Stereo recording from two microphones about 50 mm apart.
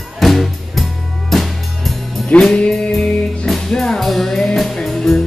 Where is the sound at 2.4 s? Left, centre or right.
Centre.